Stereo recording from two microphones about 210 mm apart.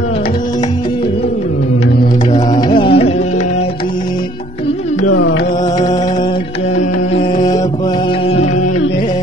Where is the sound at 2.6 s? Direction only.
25° left (ahead or behind).